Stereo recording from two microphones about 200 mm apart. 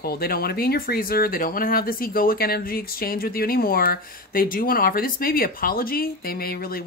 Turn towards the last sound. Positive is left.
turn(degrees=45)  # may be behind; listen again after turning